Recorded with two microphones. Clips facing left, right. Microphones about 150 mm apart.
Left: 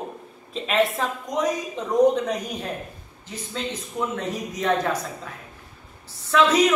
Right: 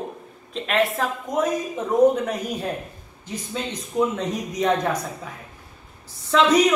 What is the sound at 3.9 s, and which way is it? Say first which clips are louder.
Speech: right 7 dB; 15° right (ahead or behind).